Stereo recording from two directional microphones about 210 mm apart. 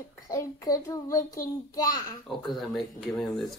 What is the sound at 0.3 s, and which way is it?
A child's voice, 15° left (ahead or behind).